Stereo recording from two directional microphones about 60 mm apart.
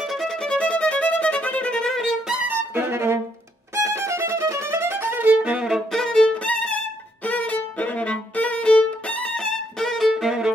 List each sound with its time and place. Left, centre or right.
0.0 s violin: centre
1.9 s music: centre
2.4 s music: right
3.7 s violin: right; by 5.7 s centre
5.9 s violin: centre
10.1 s violin: centre